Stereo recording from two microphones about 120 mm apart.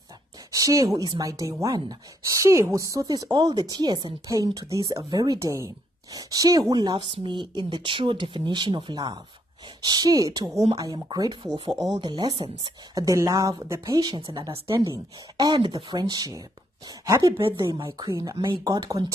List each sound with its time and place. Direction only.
0.5 s a woman's voice: 30° right (ahead or behind)